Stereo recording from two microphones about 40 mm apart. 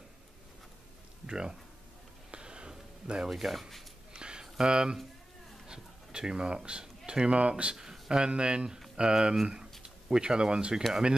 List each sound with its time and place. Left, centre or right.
1.2 s speech: centre
2.3 s sniff: right
3.3 s speech: centre
4.1 s a sound: right
5.7 s speech: right
7.7 s a sound: centre
8.3 s speech: right